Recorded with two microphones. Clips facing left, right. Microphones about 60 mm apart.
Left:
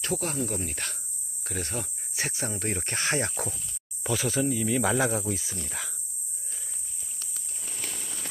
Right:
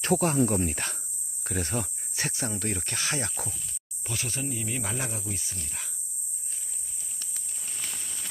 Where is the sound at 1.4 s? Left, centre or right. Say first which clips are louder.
Right 3 dB; centre.